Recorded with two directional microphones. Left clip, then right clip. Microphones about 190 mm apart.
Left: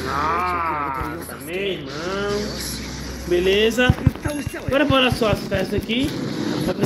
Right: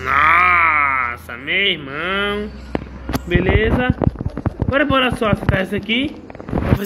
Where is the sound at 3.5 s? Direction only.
10° left (ahead or behind).